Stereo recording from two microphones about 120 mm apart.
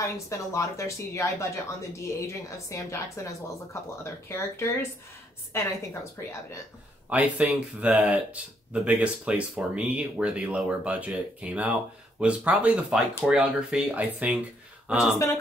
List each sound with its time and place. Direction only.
0.0 s a woman's voice: 25° left (ahead or behind)
7.1 s speech: 10° right (ahead or behind)